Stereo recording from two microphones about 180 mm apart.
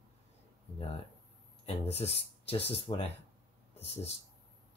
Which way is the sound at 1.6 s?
35° left (ahead or behind).